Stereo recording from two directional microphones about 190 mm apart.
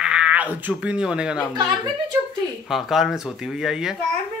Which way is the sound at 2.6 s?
Centre (ahead or behind).